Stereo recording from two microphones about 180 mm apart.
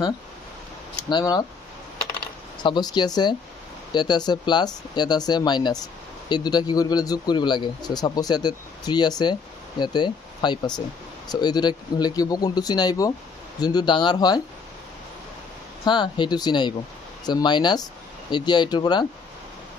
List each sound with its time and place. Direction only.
1.0 s a man's voice: 25° left (ahead or behind)
2.6 s a man's voice: 25° left (ahead or behind)
15.8 s a man's voice: 25° left (ahead or behind)